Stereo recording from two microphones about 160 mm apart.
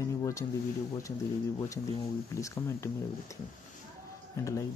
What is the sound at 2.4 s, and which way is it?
Speech, 20° left (ahead or behind).